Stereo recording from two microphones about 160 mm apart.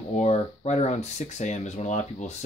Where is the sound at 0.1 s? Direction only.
45° left (ahead or behind).